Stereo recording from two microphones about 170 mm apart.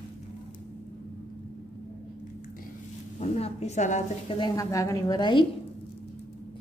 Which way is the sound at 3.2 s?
40° left (ahead or behind).